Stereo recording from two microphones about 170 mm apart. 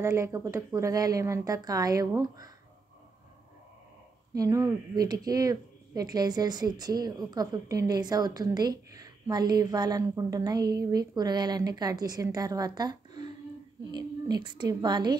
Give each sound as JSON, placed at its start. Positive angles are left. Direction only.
{"t": 0.0, "sound": "speech", "side_deg": -15}
{"t": 4.3, "sound": "a woman's voice", "side_deg": -20}